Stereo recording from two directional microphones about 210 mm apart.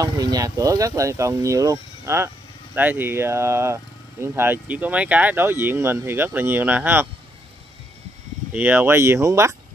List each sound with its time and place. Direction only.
0.0 s speech: 15° right (ahead or behind)
8.5 s speech: 10° right (ahead or behind)